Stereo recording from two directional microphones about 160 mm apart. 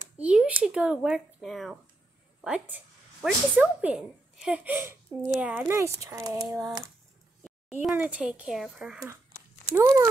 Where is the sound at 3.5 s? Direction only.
5° right (ahead or behind).